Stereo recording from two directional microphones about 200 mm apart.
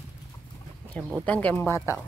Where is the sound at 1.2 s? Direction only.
5° left (ahead or behind).